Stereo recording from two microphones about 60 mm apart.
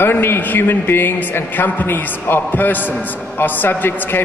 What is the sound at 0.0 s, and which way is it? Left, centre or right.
A man's voice, left.